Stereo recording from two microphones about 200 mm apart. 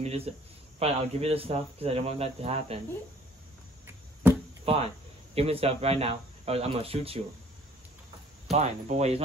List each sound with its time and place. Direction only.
0.0 s speech: 30° right (ahead or behind)
3.8 s a sound: 10° right (ahead or behind)
4.6 s speech: 30° right (ahead or behind)
8.5 s speech: 35° right (ahead or behind)